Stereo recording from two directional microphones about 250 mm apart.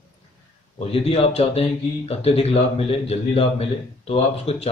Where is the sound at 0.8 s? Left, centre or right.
Left.